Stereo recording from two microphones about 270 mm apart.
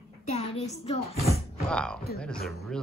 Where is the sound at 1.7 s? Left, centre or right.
Centre.